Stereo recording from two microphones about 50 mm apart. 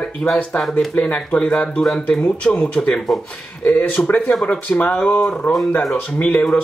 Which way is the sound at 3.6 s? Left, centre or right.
Left.